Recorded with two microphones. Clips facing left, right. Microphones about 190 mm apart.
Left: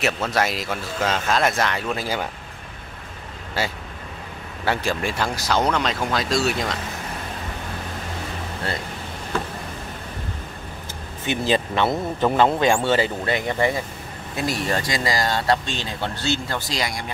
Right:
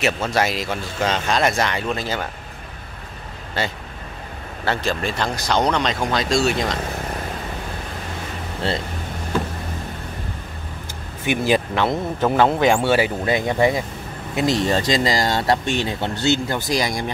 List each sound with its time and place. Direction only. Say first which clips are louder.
0.0 s speech: right 2 dB; centre (ahead or behind)
3.6 s speech: right 1 dB; 10° left (ahead or behind)
11.2 s speech: right 3 dB; 10° right (ahead or behind)